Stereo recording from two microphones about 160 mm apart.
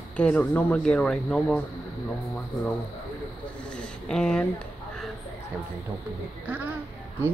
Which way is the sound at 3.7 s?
5° left (ahead or behind).